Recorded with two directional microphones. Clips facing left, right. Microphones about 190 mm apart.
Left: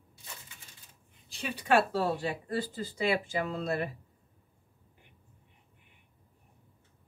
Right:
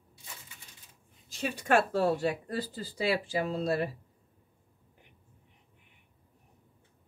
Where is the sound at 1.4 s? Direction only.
45° right (ahead or behind).